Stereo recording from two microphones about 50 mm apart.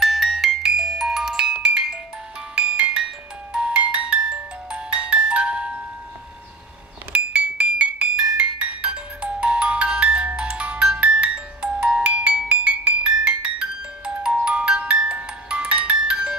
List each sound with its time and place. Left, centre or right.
0.0 s music: centre; by 3.1 s right
3.5 s glockenspiel: right
7.1 s music: right